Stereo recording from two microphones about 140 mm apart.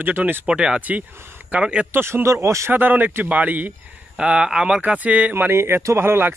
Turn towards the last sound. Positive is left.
turn(degrees=-15)  # may be behind; listen again after turning